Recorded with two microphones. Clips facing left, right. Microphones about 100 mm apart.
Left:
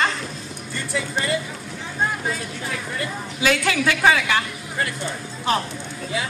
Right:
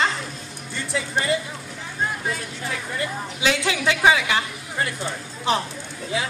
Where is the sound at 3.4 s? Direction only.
20° right (ahead or behind).